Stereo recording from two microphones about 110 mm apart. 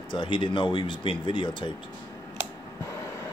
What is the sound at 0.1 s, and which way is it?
Speech, 45° left (ahead or behind).